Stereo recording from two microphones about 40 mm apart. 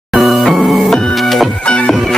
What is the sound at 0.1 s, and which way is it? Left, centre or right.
Music, centre.